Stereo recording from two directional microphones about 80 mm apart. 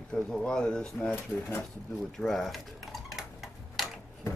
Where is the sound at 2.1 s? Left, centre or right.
Centre.